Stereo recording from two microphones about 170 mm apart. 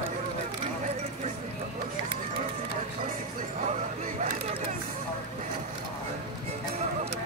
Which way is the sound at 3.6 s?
45° right (ahead or behind).